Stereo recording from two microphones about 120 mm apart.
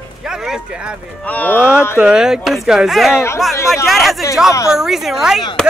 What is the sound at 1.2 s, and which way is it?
Speech, 15° left (ahead or behind).